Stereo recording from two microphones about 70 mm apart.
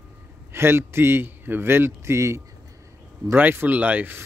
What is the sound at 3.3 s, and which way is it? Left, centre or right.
Speech, right.